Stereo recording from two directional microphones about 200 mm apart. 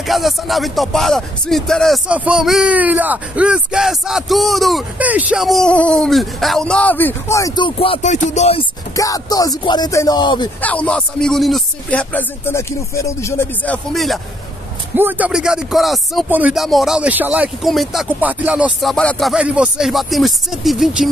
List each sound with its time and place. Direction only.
0.0 s speech: centre (ahead or behind); by 8.6 s 30° left (ahead or behind)
8.9 s speech: 15° left (ahead or behind)
10.6 s speech: 5° left (ahead or behind)